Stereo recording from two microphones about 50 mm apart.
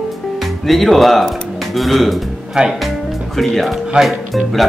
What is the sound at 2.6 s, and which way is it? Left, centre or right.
Speech, centre.